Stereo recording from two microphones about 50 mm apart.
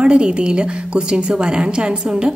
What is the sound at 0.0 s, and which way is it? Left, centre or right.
A woman's voice, centre.